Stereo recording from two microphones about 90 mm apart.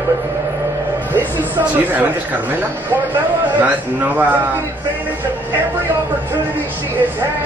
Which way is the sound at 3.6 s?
15° right (ahead or behind).